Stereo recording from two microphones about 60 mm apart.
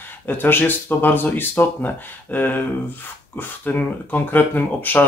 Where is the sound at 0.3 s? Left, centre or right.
Left.